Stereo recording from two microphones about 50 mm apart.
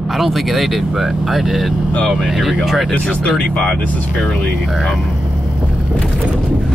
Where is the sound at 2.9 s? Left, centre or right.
Left.